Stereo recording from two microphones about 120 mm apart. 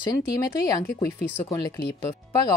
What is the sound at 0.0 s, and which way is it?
Speech, 30° left (ahead or behind).